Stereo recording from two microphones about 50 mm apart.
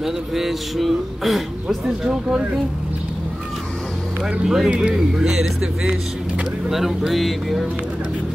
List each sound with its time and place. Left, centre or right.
0.0 s a man's voice: centre
2.2 s speech: centre
4.2 s speech: centre
6.7 s a man's voice: centre